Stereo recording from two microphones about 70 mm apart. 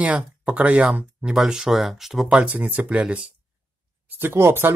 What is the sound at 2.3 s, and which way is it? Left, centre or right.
Speech, right.